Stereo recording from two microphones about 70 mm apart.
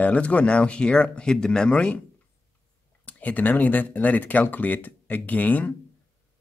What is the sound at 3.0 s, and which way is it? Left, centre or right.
Speech, left.